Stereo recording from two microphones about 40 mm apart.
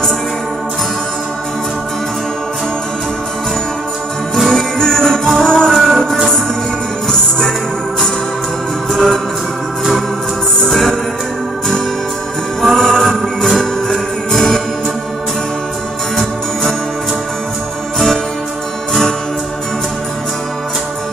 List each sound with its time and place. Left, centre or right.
4.4 s jingle bell: centre
4.7 s music: centre
5.7 s music: centre
7.1 s music: centre
8.9 s music: centre
10.7 s music: centre
12.7 s music: centre
17.9 s music: centre